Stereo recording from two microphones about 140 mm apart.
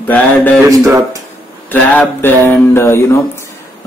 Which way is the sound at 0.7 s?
20° right (ahead or behind).